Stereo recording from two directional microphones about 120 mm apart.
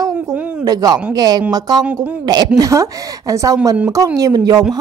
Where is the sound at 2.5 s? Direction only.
30° right (ahead or behind).